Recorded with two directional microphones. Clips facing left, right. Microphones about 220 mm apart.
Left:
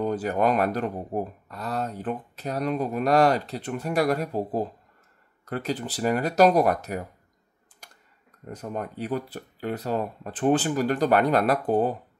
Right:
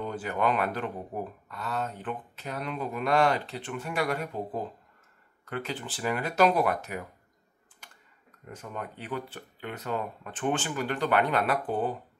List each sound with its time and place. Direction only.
0.0 s speech: 40° left (ahead or behind)
7.8 s computer keyboard: 40° left (ahead or behind)
8.5 s speech: 40° left (ahead or behind)